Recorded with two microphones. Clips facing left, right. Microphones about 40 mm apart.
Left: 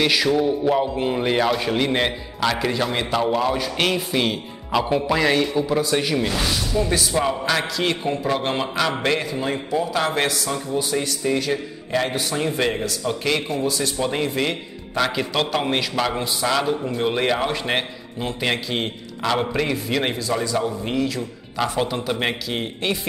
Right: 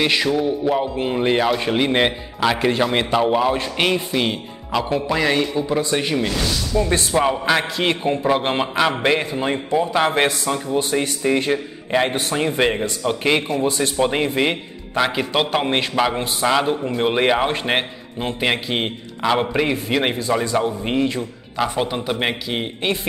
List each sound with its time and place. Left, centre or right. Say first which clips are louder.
0.0 s a man's voice: even; centre
6.9 s speech: right 2 dB; right
7.2 s a man's voice: right 5 dB; centre
21.6 s a man's voice: even; centre